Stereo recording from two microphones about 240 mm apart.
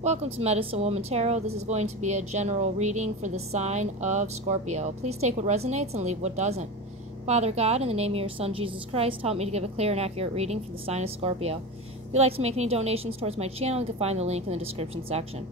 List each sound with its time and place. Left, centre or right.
0.0 s speech: right